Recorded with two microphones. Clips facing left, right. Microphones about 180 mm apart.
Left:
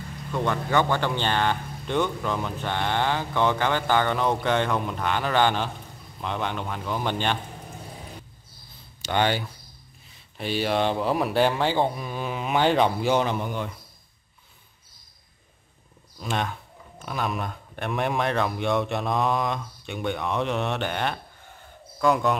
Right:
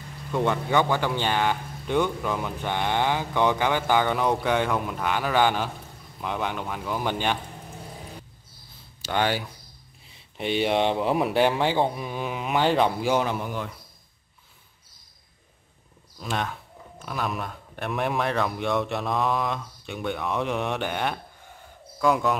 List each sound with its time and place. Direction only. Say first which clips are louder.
0.3 s speech: right 1 dB; 15° right (ahead or behind)
9.0 s a man's voice: left 1 dB; 5° right (ahead or behind)
10.3 s speech: right 2 dB; 20° right (ahead or behind); by 13.7 s 5° right (ahead or behind)
16.2 s a man's voice: left 1 dB; centre (ahead or behind)